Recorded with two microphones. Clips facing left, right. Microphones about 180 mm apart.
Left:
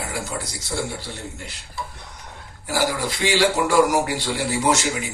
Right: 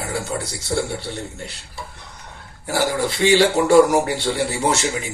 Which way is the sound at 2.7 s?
30° right (ahead or behind).